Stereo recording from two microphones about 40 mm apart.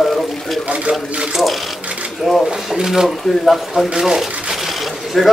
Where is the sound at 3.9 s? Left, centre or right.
Centre.